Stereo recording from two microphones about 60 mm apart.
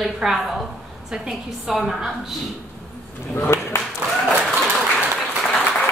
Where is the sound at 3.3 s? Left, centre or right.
Left.